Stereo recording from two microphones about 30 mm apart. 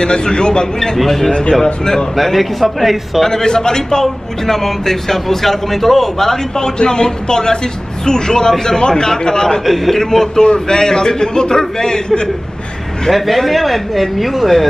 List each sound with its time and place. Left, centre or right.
0.0 s a man's voice: left
0.9 s speech: centre
1.5 s a man's voice: centre
2.1 s speech: centre
3.3 s a man's voice: centre
4.0 s a man's voice: centre
9.7 s a man's voice: centre
13.1 s speech: centre